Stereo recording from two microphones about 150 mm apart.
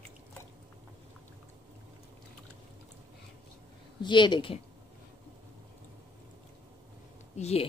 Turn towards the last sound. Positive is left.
turn(degrees=45)  # may be behind; listen again after turning